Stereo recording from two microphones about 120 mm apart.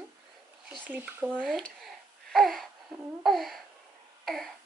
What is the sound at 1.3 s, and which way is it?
A child's voice, 5° left (ahead or behind).